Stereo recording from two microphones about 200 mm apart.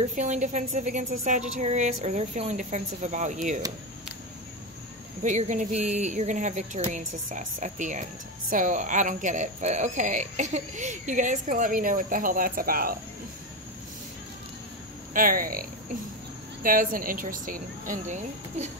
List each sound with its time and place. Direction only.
0.1 s speech: 35° right (ahead or behind)
5.2 s speech: 40° right (ahead or behind)
15.1 s speech: 45° right (ahead or behind)
16.6 s speech: 45° right (ahead or behind)